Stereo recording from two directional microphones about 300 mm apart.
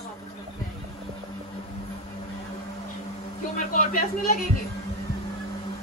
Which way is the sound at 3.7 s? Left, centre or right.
Left.